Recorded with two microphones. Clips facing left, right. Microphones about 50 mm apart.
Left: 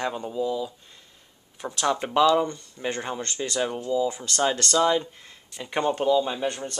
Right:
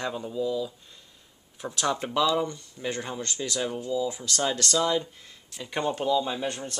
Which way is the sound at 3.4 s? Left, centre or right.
Left.